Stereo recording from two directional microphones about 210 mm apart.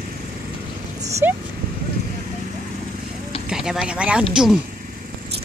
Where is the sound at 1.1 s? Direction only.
10° right (ahead or behind).